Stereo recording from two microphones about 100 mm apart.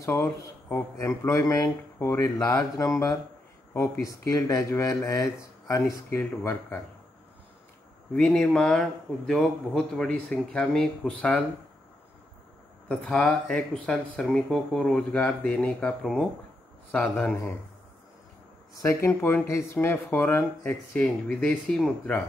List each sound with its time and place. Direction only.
0.0 s speech: 30° left (ahead or behind)
6.0 s speech: 20° left (ahead or behind)
8.1 s speech: 10° left (ahead or behind)
12.8 s speech: 10° left (ahead or behind)
16.9 s speech: 20° left (ahead or behind)
18.8 s speech: 30° left (ahead or behind)
21.3 s speech: 5° left (ahead or behind)